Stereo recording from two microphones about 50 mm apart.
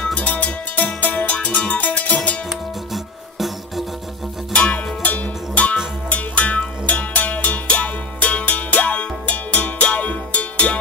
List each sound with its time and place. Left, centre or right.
0.1 s music: left
2.9 s music: centre
4.6 s music: left